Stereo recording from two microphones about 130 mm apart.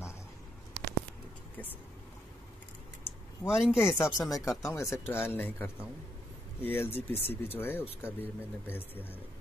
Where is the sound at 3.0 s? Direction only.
20° left (ahead or behind).